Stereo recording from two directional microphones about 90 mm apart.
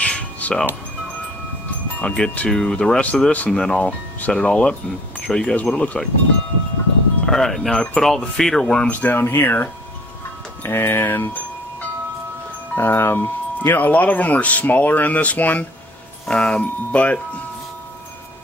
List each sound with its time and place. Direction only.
0.0 s music: 15° left (ahead or behind)
2.0 s speech: 10° left (ahead or behind)
7.2 s speech: 5° left (ahead or behind)
8.9 s speech: 20° left (ahead or behind)
12.7 s speech: 25° left (ahead or behind)